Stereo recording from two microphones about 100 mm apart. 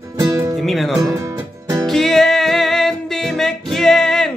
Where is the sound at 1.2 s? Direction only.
35° right (ahead or behind).